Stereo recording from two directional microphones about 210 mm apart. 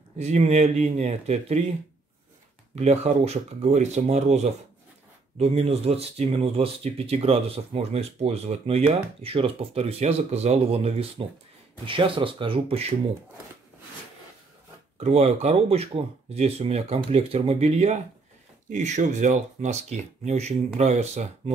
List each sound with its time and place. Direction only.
0.2 s speech: 30° right (ahead or behind)
2.7 s speech: 30° right (ahead or behind)
15.0 s speech: 30° right (ahead or behind)